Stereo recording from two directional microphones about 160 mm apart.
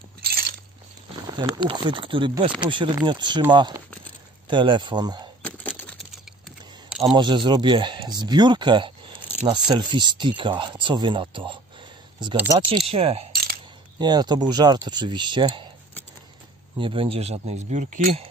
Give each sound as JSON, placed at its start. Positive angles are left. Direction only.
{"t": 0.2, "sound": "a sound", "side_deg": -75}
{"t": 1.3, "sound": "speech", "side_deg": -25}
{"t": 4.5, "sound": "speech", "side_deg": -30}
{"t": 7.2, "sound": "speech", "side_deg": -30}
{"t": 12.4, "sound": "speech", "side_deg": -20}
{"t": 12.6, "sound": "speech", "side_deg": -35}
{"t": 13.3, "sound": "coin", "side_deg": -70}
{"t": 13.9, "sound": "speech", "side_deg": -25}
{"t": 16.7, "sound": "speech", "side_deg": -30}